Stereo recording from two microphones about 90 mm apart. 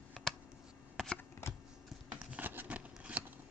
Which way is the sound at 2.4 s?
20° right (ahead or behind).